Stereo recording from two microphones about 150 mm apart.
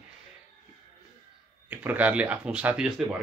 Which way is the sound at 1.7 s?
10° right (ahead or behind).